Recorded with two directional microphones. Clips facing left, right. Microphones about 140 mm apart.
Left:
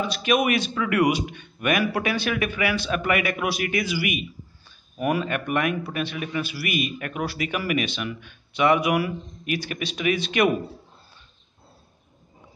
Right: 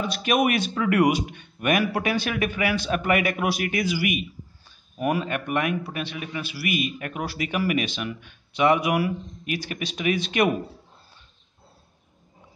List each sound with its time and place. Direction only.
0.1 s a man's voice: 45° right (ahead or behind)